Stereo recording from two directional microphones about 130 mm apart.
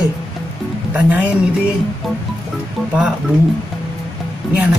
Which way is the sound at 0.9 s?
10° right (ahead or behind).